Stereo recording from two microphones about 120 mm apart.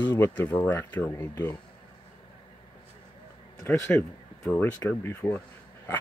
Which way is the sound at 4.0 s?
15° left (ahead or behind).